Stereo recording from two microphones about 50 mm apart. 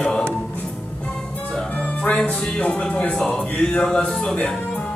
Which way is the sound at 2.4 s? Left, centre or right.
Centre.